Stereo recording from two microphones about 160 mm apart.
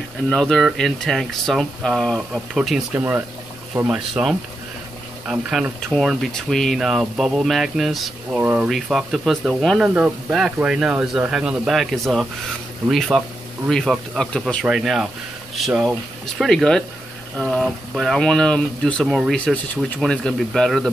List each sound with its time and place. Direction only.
0.3 s speech: 5° left (ahead or behind)
3.0 s speech: 15° right (ahead or behind)
4.1 s speech: centre (ahead or behind)
8.4 s speech: 10° right (ahead or behind)
8.6 s speech: centre (ahead or behind)
13.7 s speech: centre (ahead or behind)